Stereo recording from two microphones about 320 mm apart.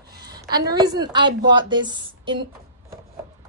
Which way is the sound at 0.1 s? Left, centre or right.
Right.